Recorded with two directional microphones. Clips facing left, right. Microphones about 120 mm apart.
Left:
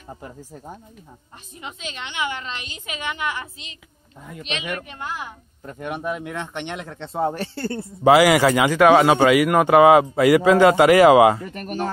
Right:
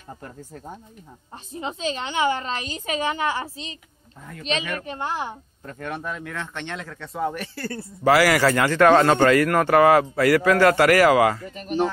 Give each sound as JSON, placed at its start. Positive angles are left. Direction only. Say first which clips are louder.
{"t": 1.5, "sound": "a woman's voice", "louder": "right 8 dB", "side_deg": -30}
{"t": 4.8, "sound": "a woman's voice", "louder": "right 4 dB", "side_deg": -30}
{"t": 5.7, "sound": "speech", "louder": "left 4 dB", "side_deg": 15}
{"t": 11.4, "sound": "speech", "louder": "right 3 dB", "side_deg": 55}